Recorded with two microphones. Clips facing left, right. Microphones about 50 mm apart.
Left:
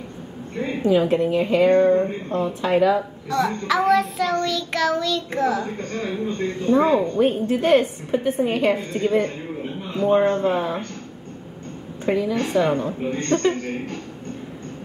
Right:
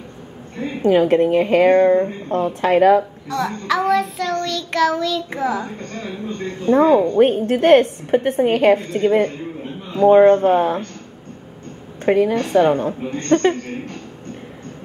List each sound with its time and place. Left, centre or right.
0.8 s a woman's voice: right
3.3 s child singing: centre
6.7 s a woman's voice: right
10.2 s a woman's voice: right
12.0 s a woman's voice: right